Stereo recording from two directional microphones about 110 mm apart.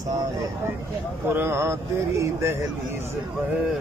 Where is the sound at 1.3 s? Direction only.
20° right (ahead or behind).